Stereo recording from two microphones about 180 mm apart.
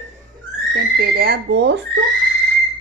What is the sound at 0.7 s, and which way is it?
Speech, 60° right (ahead or behind).